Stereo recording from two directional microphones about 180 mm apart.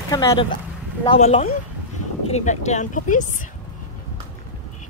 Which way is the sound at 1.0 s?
30° left (ahead or behind).